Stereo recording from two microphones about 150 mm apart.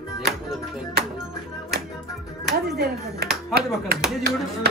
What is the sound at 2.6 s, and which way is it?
Speech, 90° right.